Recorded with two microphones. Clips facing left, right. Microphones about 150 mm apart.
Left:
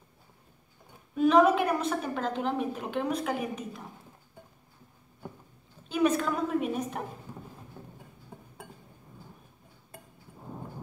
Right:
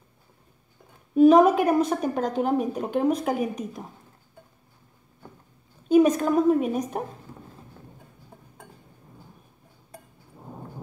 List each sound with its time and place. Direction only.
1.1 s a woman's voice: 40° right (ahead or behind)
5.9 s a woman's voice: 40° right (ahead or behind)